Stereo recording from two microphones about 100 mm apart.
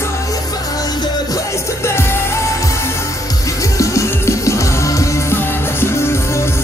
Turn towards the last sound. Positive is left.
turn(degrees=25)  # may be behind; listen again after turning